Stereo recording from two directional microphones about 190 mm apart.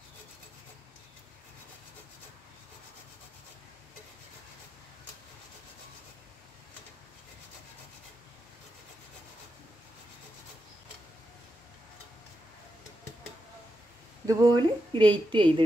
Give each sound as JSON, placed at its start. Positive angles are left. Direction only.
{"t": 14.2, "sound": "a woman's voice", "side_deg": -20}